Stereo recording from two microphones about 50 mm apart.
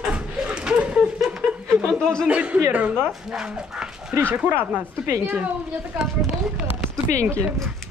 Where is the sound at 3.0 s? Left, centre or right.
Right.